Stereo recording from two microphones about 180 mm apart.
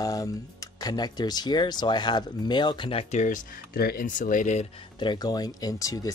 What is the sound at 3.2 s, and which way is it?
Speech, 50° left (ahead or behind).